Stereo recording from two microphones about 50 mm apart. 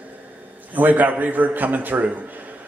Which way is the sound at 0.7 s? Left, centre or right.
Right.